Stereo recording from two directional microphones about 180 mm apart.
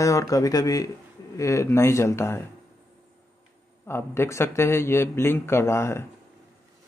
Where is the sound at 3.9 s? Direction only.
15° left (ahead or behind).